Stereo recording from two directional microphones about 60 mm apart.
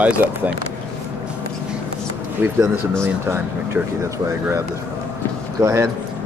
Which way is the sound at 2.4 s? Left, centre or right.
Right.